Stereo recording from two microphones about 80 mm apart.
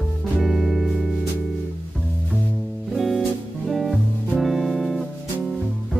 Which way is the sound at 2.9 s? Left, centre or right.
Centre.